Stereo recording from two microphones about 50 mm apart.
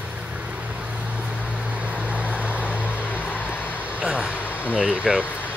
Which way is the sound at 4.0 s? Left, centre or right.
Centre.